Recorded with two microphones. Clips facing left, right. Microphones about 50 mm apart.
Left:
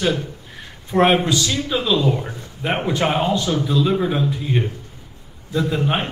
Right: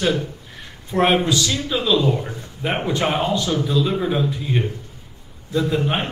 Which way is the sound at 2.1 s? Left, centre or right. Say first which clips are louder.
Even; centre.